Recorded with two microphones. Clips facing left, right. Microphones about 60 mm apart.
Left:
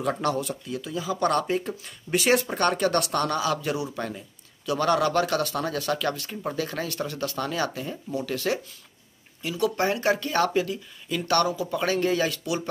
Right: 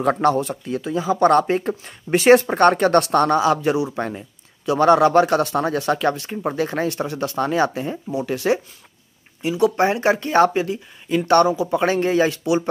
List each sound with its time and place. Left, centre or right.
0.0 s speech: right
8.1 s speech: centre